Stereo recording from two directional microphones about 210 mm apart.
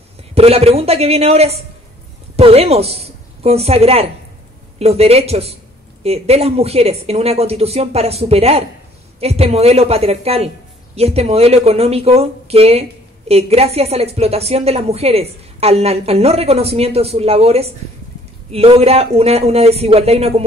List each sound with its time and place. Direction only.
0.3 s a woman's voice: 30° right (ahead or behind)